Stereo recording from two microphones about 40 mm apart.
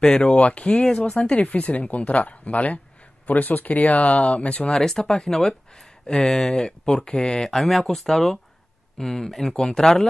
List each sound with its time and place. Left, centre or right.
0.2 s speech: left
1.3 s speech: left
4.8 s speech: centre
6.6 s speech: left